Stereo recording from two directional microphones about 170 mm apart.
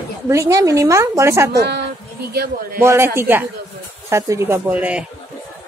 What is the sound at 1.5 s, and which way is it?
Speech, 70° right (ahead or behind).